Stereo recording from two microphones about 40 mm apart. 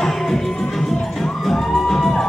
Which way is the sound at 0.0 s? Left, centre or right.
Centre.